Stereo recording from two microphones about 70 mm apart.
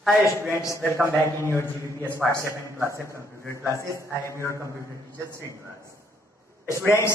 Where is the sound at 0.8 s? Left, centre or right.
Right.